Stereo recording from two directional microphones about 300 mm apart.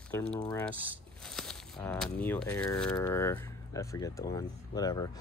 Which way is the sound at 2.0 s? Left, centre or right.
Centre.